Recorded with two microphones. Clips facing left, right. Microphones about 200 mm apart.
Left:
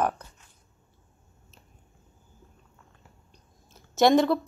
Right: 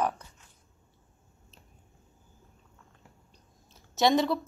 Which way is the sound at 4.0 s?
50° left (ahead or behind).